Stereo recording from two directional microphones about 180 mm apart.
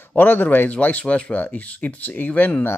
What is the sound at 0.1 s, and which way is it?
Speech, 10° left (ahead or behind).